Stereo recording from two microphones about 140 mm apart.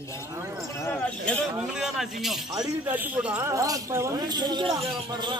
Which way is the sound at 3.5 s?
25° right (ahead or behind).